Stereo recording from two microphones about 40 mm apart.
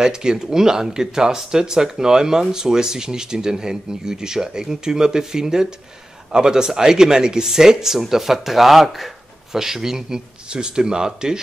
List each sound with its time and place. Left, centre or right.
0.0 s speech: centre